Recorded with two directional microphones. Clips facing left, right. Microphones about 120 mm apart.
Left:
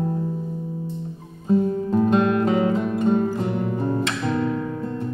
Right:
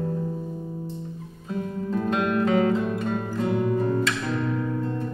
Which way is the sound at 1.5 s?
30° left (ahead or behind).